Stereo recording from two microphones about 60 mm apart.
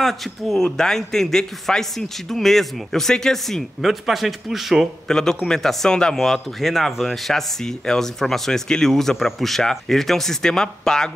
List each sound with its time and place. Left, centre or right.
0.0 s a man's voice: centre
3.8 s a man's voice: centre
5.0 s speech: centre